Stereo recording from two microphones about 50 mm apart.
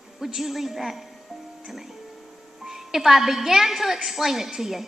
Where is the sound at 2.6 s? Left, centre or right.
Centre.